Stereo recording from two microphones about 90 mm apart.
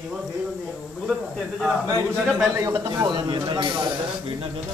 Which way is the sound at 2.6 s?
30° right (ahead or behind).